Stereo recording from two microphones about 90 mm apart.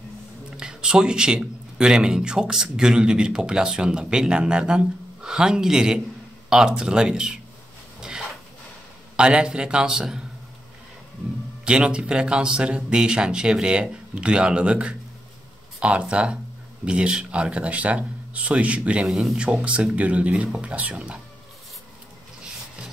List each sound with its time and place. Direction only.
0.6 s a man's voice: 10° right (ahead or behind)
8.0 s a sound: 5° right (ahead or behind)
9.1 s a man's voice: 10° right (ahead or behind)
11.6 s a man's voice: 10° right (ahead or behind)
19.0 s speech: centre (ahead or behind)
19.6 s a man's voice: 15° right (ahead or behind)